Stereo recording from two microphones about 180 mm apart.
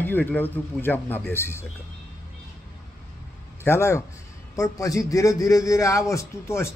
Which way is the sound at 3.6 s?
15° left (ahead or behind).